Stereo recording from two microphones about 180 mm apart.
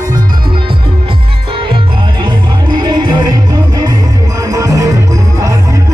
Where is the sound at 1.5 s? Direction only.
30° right (ahead or behind).